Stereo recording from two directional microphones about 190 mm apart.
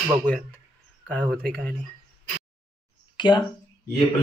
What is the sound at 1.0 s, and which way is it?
Speech, 5° left (ahead or behind).